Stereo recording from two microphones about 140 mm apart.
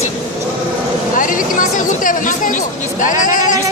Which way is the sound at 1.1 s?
75° left (ahead or behind).